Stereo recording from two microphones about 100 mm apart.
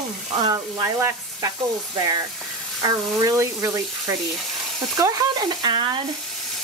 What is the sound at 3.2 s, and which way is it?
Speech, 35° right (ahead or behind).